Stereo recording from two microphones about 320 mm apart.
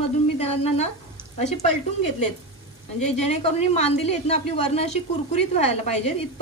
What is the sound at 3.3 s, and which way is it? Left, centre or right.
A woman's voice, centre.